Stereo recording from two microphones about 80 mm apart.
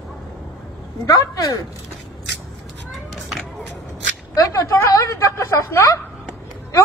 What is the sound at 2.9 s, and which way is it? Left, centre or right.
Children playing, centre.